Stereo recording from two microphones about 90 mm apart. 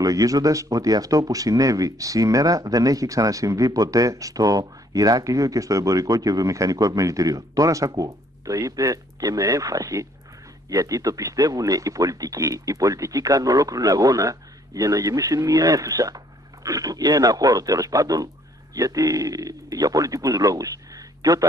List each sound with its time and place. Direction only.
0.0 s a man's voice: 40° right (ahead or behind)